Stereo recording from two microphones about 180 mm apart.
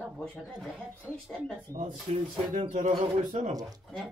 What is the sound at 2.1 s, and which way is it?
Speech, 35° right (ahead or behind).